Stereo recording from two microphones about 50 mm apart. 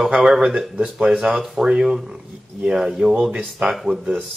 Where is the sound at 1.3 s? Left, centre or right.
Centre.